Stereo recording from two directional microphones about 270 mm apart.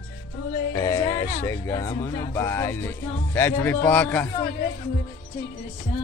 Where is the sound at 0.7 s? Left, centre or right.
Centre.